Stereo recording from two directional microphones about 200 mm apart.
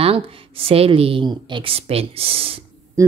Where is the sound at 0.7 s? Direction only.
30° right (ahead or behind).